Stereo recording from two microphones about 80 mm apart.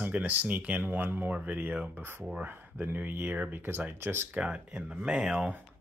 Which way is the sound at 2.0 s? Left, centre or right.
Right.